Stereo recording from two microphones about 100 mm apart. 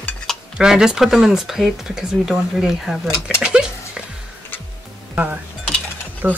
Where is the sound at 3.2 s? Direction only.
10° right (ahead or behind).